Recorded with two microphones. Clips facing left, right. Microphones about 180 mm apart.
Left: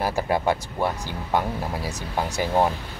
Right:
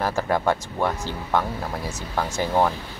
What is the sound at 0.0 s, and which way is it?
Speech, 10° left (ahead or behind).